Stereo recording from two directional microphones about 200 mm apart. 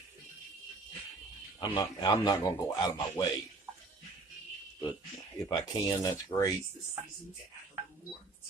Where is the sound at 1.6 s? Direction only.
20° left (ahead or behind).